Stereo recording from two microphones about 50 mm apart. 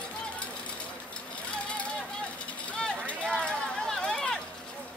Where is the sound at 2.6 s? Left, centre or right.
Left.